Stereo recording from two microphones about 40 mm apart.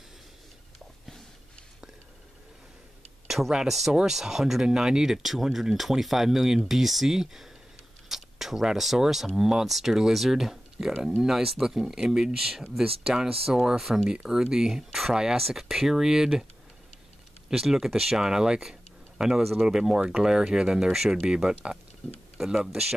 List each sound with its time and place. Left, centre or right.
3.3 s a sound: centre
3.6 s speech: centre
12.4 s speech: centre
14.2 s speech: centre
17.5 s speech: centre
20.0 s speech: right; by 22.9 s centre